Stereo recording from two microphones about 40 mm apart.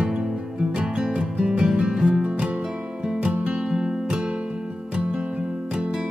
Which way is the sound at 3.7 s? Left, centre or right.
Centre.